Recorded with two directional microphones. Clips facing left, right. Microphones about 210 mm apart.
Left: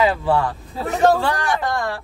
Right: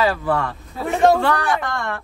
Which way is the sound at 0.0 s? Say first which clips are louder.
Left 2 dB; 25° left (ahead or behind).